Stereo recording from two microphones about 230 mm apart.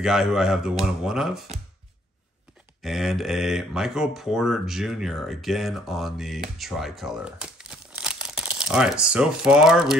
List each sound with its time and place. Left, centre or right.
0.0 s speech: centre
2.8 s speech: centre